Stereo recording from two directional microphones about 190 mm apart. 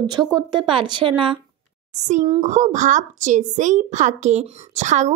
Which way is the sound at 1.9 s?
40° right (ahead or behind).